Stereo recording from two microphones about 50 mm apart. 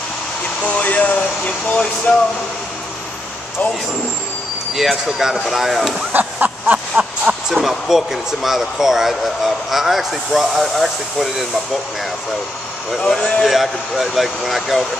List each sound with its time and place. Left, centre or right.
0.7 s speech: left
4.7 s speech: centre
6.1 s a sound: right
7.4 s speech: centre
13.1 s speech: centre
13.5 s speech: centre